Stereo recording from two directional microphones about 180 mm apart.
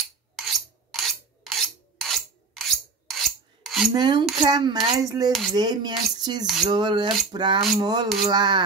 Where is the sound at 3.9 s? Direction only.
25° right (ahead or behind).